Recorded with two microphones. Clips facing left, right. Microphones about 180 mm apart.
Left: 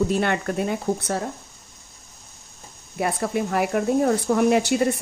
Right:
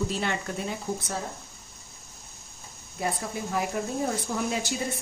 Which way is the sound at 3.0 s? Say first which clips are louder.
Left 7 dB; 70° left (ahead or behind).